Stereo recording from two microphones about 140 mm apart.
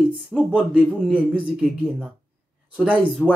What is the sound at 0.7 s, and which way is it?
Speech, 10° right (ahead or behind).